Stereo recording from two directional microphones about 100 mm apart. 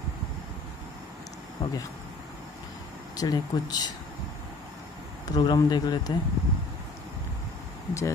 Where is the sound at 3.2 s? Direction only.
40° left (ahead or behind).